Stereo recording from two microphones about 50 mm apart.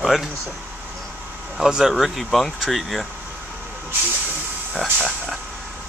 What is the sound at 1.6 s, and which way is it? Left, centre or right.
Speech, centre.